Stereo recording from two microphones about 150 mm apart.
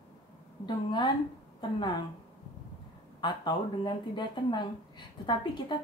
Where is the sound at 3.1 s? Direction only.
30° left (ahead or behind).